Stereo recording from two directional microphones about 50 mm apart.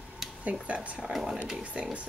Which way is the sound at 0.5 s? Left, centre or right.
Right.